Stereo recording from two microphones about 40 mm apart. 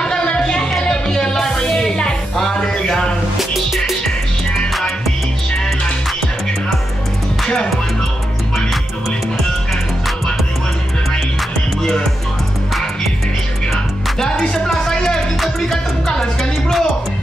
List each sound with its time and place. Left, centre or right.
0.0 s music: left
3.3 s music: centre
7.4 s music: centre
14.7 s a sound: centre
15.7 s music: centre